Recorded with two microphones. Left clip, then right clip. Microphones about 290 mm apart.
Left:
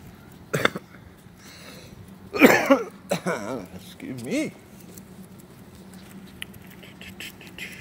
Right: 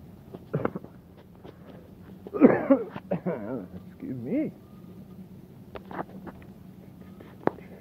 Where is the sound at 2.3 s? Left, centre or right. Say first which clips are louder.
Left 4 dB; left.